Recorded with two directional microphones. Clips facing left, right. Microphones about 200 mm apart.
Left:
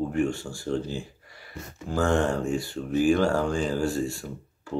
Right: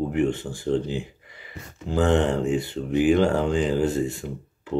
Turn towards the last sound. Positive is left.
turn(degrees=-20)  # may be behind; listen again after turning